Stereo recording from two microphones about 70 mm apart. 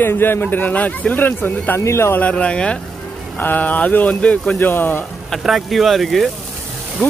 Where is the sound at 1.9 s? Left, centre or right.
Left.